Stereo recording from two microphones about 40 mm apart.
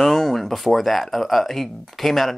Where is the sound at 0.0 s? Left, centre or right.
Centre.